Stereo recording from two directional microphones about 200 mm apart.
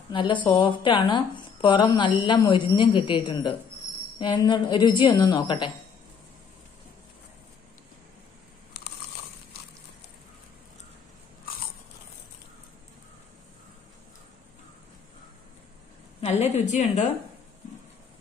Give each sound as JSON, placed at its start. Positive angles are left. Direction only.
{"t": 0.1, "sound": "speech", "side_deg": 25}
{"t": 8.8, "sound": "a sound", "side_deg": 55}
{"t": 16.2, "sound": "a woman's voice", "side_deg": 30}